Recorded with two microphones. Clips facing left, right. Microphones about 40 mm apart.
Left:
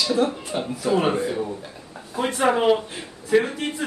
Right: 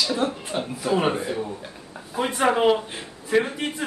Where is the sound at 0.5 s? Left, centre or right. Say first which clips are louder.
Left 2 dB; centre.